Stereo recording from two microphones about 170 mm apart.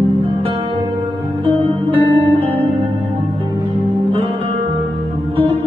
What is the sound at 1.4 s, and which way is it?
Music, 30° right (ahead or behind).